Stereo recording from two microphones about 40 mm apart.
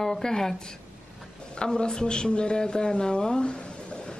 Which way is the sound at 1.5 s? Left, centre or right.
Left.